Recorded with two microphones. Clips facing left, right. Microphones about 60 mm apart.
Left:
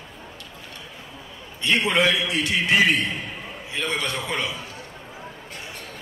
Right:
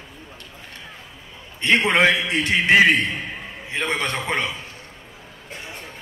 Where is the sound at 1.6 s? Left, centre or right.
Right.